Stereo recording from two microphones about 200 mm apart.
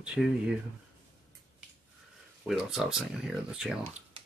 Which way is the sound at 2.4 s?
Centre (ahead or behind).